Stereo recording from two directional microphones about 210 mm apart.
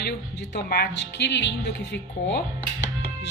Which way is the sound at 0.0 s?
50° left (ahead or behind).